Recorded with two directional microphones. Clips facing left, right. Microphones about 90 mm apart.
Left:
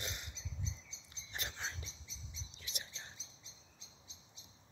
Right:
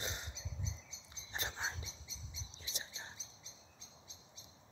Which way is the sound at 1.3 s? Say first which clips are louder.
Right 3 dB; 30° right (ahead or behind).